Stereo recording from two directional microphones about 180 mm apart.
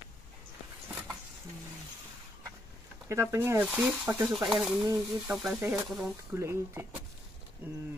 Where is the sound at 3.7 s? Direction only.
5° right (ahead or behind).